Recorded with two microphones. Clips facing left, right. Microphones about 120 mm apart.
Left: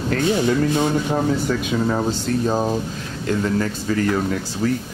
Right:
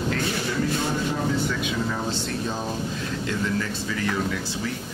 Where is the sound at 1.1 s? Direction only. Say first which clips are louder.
Left 5 dB; 45° left (ahead or behind).